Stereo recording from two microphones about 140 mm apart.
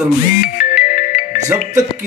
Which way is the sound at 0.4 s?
80° left.